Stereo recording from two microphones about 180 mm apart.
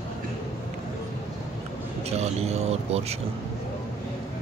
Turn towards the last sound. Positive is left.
turn(degrees=-35)  # may be behind; listen again after turning